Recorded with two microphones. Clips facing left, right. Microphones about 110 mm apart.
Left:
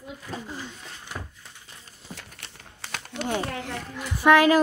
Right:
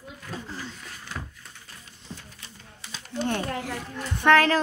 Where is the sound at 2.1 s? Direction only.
70° left (ahead or behind).